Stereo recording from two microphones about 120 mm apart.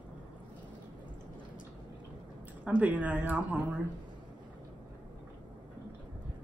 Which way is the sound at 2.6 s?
10° right (ahead or behind).